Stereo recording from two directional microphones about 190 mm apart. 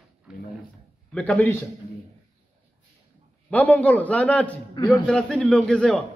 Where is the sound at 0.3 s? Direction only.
5° right (ahead or behind).